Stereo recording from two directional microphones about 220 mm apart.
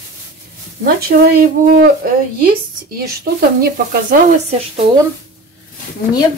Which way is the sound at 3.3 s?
35° right (ahead or behind).